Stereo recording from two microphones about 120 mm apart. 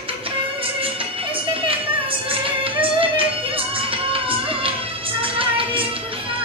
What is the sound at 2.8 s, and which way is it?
Music, 50° right (ahead or behind).